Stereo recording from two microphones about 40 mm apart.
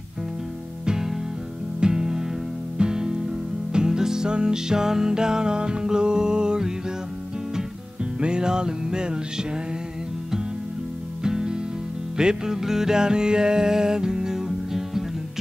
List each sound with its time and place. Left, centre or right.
0.8 s music: centre
8.0 s music: right
11.2 s music: centre